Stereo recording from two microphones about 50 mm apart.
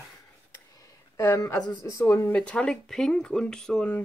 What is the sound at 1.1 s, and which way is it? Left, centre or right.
Speech, left.